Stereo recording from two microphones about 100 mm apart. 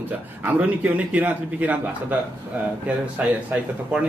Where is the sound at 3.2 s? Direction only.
15° right (ahead or behind).